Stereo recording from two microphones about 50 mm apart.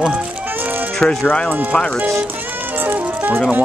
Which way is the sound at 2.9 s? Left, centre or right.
Right.